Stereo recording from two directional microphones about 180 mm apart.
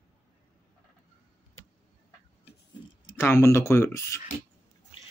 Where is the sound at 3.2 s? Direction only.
15° left (ahead or behind).